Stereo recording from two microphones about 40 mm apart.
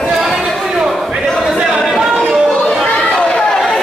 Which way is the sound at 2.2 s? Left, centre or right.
Centre.